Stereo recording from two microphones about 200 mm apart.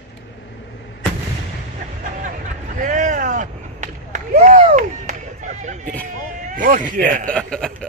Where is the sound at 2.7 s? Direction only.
40° right (ahead or behind).